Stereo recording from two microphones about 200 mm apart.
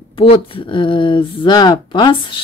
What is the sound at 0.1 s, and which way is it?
A woman's voice, 25° left (ahead or behind).